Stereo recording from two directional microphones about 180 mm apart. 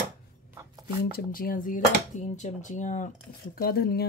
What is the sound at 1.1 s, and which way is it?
Speech, 55° left (ahead or behind).